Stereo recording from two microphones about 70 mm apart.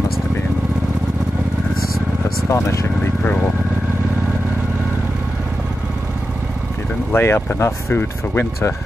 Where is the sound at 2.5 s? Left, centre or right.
Left.